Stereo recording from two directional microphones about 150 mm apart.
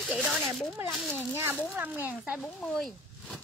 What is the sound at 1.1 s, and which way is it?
Speech, 15° right (ahead or behind).